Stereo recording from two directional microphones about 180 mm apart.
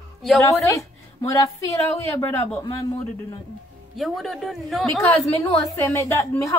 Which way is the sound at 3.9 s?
Centre (ahead or behind).